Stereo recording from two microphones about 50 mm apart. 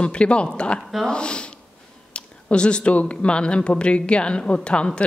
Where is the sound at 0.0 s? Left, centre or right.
Left.